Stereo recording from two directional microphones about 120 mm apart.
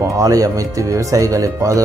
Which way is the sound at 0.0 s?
30° right (ahead or behind).